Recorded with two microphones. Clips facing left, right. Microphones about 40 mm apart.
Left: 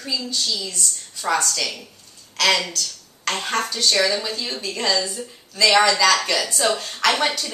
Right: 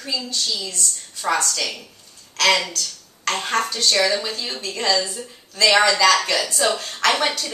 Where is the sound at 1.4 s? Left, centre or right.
Centre.